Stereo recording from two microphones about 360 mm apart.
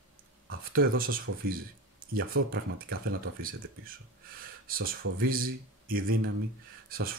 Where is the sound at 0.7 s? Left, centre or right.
Right.